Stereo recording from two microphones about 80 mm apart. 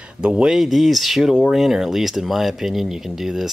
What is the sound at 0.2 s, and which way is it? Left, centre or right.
Speech, centre.